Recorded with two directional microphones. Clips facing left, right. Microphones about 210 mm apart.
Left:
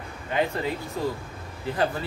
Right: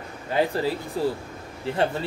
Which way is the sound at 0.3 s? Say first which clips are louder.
Right 3 dB; 30° right (ahead or behind).